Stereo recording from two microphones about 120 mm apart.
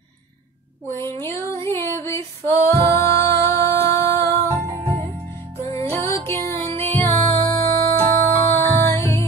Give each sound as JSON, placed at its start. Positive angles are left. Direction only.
{"t": 0.8, "sound": "female singing", "side_deg": 20}
{"t": 4.5, "sound": "music", "side_deg": -25}
{"t": 5.7, "sound": "music", "side_deg": 20}